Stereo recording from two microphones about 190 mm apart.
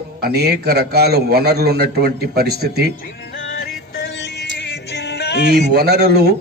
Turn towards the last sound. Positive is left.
turn(degrees=-60)  # may be behind; listen again after turning